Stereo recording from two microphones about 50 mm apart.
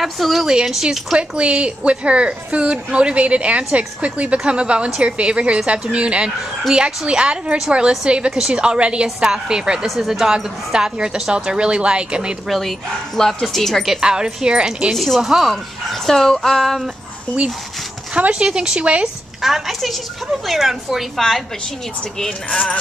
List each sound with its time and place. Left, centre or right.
0.0 s a woman's voice: centre
0.8 s a woman's voice: right
9.8 s a woman's voice: centre
12.4 s speech: centre
14.0 s a woman's voice: centre
15.0 s speech: centre
15.5 s speech: centre
18.1 s a woman's voice: right
19.4 s speech: centre